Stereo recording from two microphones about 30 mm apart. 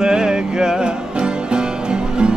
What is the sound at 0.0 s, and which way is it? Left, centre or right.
Music, right.